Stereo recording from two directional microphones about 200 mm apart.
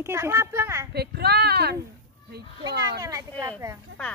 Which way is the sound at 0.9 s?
55° right (ahead or behind).